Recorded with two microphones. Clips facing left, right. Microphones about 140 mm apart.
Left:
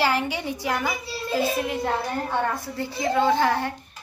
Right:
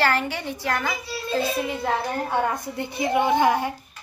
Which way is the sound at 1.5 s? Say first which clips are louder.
Even; centre (ahead or behind).